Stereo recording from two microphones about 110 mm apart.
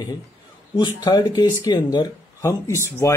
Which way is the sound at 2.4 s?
25° left (ahead or behind).